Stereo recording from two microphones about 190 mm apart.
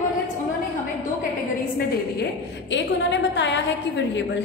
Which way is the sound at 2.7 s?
70° left (ahead or behind).